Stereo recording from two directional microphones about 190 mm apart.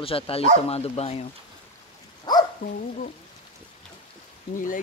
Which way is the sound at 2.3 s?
20° left (ahead or behind).